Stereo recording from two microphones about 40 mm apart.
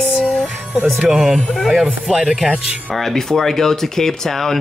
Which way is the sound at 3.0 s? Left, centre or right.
Centre.